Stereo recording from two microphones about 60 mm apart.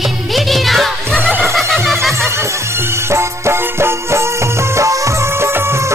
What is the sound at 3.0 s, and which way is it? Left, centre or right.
Music, right.